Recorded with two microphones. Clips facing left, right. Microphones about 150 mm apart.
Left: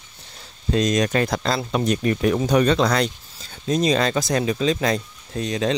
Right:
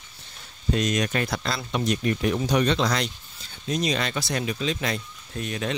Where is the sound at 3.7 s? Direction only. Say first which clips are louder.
Left 7 dB; 40° left (ahead or behind).